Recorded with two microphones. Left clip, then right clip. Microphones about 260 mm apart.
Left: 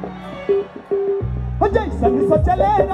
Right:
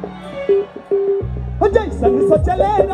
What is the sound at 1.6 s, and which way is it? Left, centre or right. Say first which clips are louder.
Speech: right 3 dB; left.